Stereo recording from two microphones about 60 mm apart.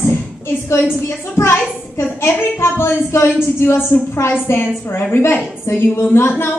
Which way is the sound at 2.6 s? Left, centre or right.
Left.